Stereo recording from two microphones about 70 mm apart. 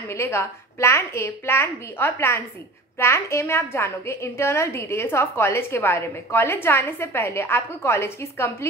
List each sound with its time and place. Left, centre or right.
0.1 s a woman's voice: left